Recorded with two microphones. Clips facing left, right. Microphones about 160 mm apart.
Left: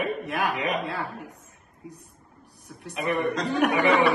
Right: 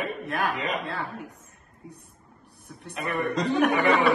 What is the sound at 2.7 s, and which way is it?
A woman's voice, 5° left (ahead or behind).